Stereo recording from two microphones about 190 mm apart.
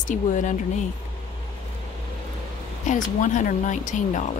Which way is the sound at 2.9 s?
40° left (ahead or behind).